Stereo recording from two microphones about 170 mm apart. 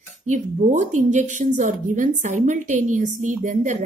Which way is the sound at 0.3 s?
45° right (ahead or behind).